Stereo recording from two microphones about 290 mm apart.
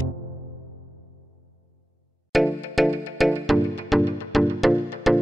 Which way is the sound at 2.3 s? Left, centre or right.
Centre.